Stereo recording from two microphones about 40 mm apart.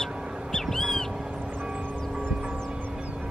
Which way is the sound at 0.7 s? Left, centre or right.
Centre.